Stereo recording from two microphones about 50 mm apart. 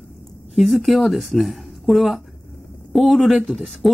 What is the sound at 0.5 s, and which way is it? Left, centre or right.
A woman's voice, centre.